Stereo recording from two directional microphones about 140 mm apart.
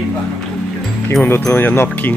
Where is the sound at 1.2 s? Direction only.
15° left (ahead or behind).